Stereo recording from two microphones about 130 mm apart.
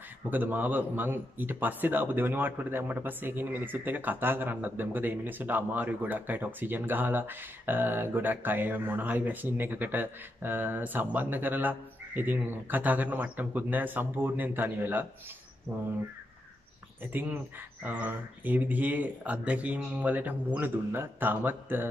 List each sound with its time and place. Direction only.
0.3 s a man's voice: 15° right (ahead or behind)
17.0 s a man's voice: 15° right (ahead or behind)